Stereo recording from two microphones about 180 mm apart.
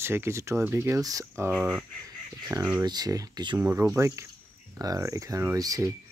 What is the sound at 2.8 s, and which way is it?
Speech, 20° right (ahead or behind).